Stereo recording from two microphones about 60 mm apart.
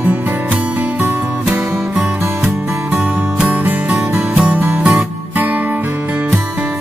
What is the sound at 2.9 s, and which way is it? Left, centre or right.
Music, right.